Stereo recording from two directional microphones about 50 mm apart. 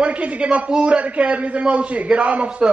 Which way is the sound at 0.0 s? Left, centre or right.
Right.